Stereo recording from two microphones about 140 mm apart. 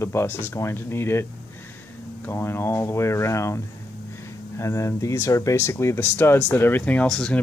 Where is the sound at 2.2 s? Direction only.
15° left (ahead or behind).